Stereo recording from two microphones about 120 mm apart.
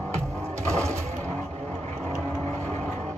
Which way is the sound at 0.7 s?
25° right (ahead or behind).